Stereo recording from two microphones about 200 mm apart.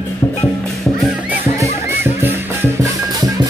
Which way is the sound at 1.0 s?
5° right (ahead or behind).